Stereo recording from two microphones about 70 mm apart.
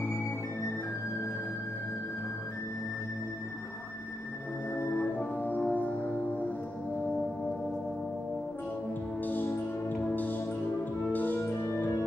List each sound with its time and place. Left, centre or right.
5.7 s music: left
9.2 s music: left